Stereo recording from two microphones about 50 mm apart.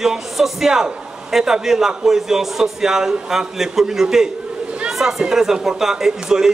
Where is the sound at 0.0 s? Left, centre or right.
Centre.